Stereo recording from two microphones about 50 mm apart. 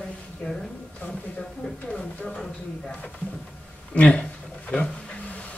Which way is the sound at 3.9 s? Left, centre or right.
Left.